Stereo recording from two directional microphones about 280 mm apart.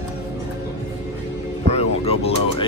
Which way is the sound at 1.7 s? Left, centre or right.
Left.